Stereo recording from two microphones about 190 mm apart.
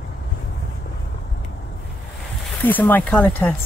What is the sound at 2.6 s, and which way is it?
Speech, 10° left (ahead or behind).